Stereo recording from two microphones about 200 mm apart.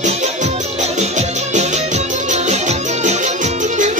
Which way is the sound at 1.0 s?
35° right (ahead or behind).